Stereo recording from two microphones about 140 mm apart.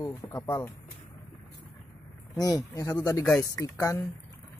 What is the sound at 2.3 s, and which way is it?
Speech, 25° left (ahead or behind).